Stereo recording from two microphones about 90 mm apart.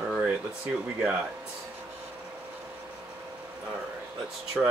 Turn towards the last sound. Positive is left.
turn(degrees=-5)  # may be behind; listen again after turning